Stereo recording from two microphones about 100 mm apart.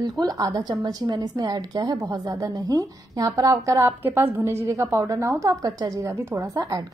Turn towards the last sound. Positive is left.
turn(degrees=-35)  # may be behind; listen again after turning